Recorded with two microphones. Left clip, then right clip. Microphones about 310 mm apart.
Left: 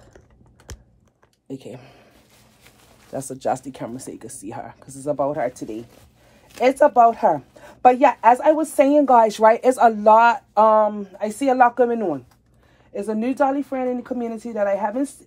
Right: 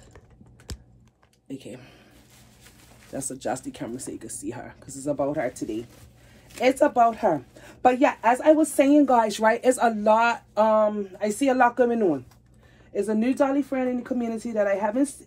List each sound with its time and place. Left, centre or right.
1.5 s speech: left
3.1 s a woman's voice: left